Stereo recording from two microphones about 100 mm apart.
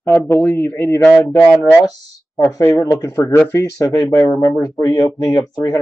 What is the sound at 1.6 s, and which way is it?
Speech, 30° left (ahead or behind).